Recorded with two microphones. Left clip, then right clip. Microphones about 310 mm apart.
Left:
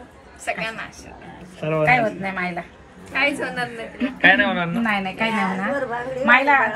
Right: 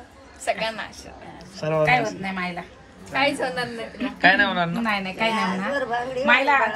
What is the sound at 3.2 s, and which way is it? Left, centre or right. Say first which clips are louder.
Speech: left 1 dB; right.